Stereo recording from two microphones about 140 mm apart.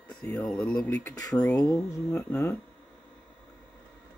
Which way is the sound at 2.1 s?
5° left (ahead or behind).